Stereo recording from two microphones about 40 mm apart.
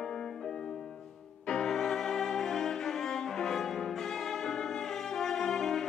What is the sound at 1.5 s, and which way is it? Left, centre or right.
Cello, centre.